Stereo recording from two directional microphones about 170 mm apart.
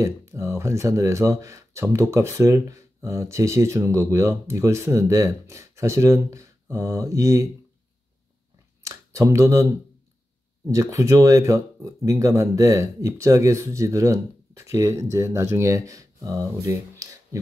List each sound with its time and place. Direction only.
0.0 s speech: 15° right (ahead or behind)
8.8 s speech: 20° right (ahead or behind)